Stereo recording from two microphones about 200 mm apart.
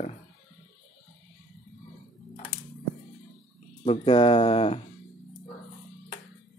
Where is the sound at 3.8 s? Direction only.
30° left (ahead or behind).